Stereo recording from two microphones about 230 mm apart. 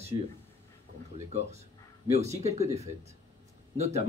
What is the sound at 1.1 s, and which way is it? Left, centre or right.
Speech, right.